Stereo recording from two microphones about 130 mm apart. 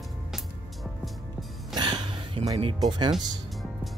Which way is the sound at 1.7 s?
35° right (ahead or behind).